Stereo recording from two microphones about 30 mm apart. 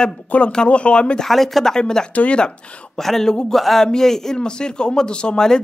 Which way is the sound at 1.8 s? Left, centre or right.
Left.